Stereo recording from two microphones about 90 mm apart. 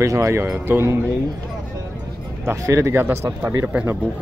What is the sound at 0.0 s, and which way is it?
Speech, 30° right (ahead or behind).